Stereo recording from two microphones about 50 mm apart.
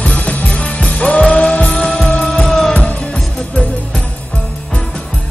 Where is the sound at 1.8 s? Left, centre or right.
Centre.